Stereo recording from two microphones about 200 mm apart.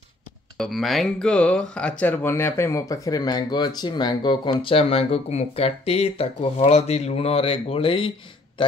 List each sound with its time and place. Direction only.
0.6 s speech: centre (ahead or behind); by 8.1 s 25° left (ahead or behind)